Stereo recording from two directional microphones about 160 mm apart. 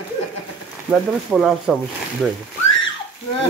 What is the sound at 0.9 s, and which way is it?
Speech, centre (ahead or behind).